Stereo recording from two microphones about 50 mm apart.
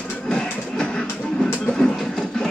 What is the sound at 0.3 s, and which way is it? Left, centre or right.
Music, centre.